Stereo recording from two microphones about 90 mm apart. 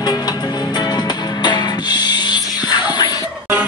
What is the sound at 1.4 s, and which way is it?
Music, 55° left (ahead or behind).